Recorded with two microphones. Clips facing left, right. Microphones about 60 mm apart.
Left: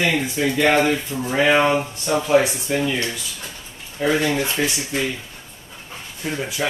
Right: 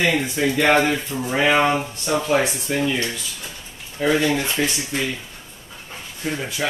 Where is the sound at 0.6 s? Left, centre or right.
Right.